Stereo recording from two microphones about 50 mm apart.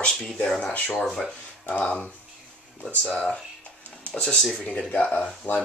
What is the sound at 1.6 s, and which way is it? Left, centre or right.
Speech, left.